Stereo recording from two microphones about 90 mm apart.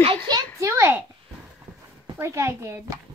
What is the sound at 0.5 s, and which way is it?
Speech, 35° right (ahead or behind).